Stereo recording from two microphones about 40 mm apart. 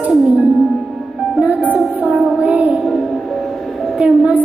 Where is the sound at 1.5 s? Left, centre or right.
Right.